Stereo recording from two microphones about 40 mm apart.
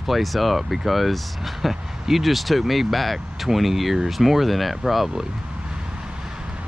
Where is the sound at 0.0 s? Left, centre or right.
Centre.